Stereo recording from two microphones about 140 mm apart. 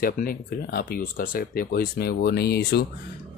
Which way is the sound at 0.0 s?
90° left.